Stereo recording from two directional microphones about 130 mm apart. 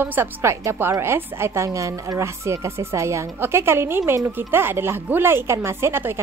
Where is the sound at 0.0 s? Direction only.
15° right (ahead or behind).